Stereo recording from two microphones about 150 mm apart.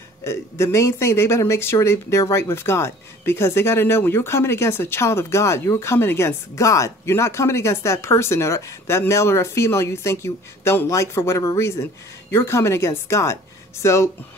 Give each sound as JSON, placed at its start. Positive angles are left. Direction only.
{"t": 0.2, "sound": "speech", "side_deg": 15}